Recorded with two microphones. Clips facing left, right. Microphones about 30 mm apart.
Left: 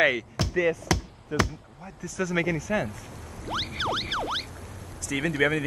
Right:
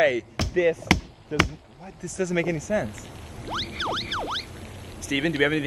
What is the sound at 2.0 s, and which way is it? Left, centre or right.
Speech, centre.